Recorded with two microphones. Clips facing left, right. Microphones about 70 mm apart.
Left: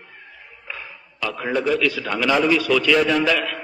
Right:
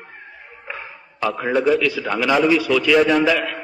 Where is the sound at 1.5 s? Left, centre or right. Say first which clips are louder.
Right 3 dB; centre.